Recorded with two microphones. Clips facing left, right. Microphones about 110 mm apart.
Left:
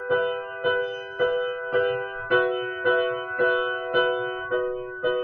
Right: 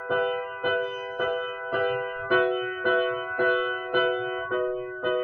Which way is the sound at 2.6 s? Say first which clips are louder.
Left 2 dB; 25° left (ahead or behind).